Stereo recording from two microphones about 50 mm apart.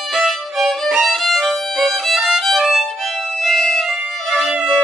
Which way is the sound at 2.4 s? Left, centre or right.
Centre.